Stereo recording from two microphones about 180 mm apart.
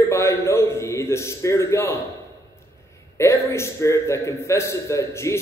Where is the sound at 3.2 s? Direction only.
15° left (ahead or behind).